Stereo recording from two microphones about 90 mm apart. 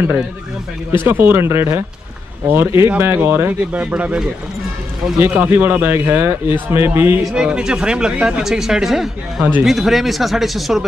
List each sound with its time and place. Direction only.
1.0 s speech: 25° right (ahead or behind)
5.2 s speech: 20° right (ahead or behind)
7.3 s speech: 10° right (ahead or behind)